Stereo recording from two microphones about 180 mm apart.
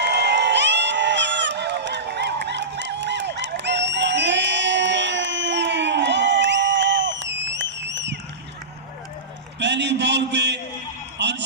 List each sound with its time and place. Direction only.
0.0 s crowd: 70° right (ahead or behind)
9.6 s a sound: 80° right
11.1 s music: 75° right (ahead or behind)